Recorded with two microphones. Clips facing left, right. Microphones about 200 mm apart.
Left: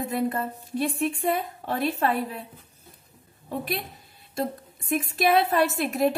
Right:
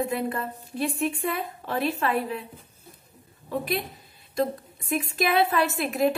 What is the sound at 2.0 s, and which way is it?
Speech, 40° left (ahead or behind).